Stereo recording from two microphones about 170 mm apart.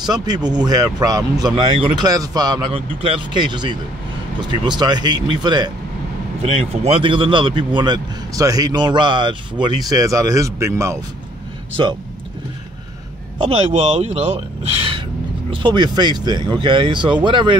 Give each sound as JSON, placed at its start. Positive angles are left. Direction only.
{"t": 0.0, "sound": "speech", "side_deg": -25}
{"t": 6.4, "sound": "speech", "side_deg": -35}
{"t": 11.7, "sound": "speech", "side_deg": -30}
{"t": 13.4, "sound": "speech", "side_deg": -35}